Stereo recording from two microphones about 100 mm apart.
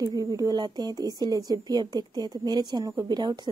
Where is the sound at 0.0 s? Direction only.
40° right (ahead or behind).